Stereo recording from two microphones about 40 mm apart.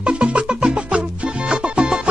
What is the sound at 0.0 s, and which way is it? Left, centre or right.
Music, right.